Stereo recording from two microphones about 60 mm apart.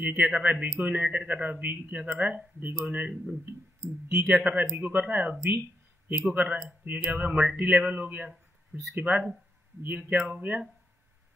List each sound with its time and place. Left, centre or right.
0.0 s speech: right